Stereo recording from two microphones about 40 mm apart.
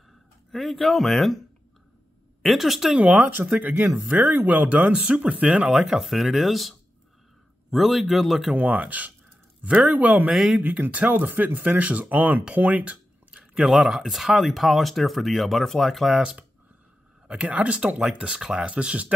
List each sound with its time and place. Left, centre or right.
0.5 s speech: centre
2.4 s speech: centre
3.4 s speech: right
4.9 s speech: right
5.7 s speech: centre
8.5 s speech: right
10.3 s speech: centre
10.9 s speech: right
12.8 s a sound: right
13.7 s speech: centre
16.2 s speech: right
17.5 s speech: right
17.9 s speech: centre
18.7 s speech: right